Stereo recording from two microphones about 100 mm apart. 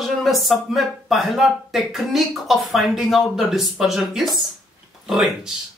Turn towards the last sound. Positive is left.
turn(degrees=0)  # may be behind; listen again after turning